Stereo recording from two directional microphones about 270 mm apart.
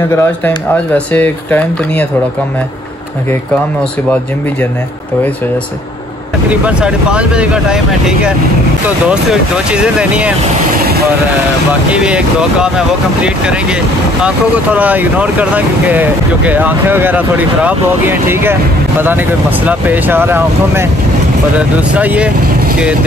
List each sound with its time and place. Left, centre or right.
0.1 s speech: centre
6.5 s speech: centre
10.8 s vehicle: right
11.9 s speech: centre